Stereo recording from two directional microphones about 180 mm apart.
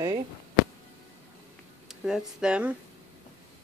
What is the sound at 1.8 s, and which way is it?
Speech, 5° right (ahead or behind).